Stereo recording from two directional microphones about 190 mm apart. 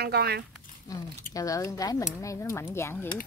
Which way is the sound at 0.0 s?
55° right (ahead or behind).